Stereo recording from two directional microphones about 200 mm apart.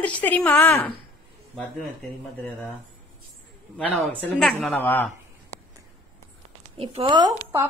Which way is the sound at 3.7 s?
5° left (ahead or behind).